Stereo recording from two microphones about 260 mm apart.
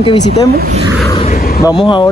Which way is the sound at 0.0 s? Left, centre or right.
Centre.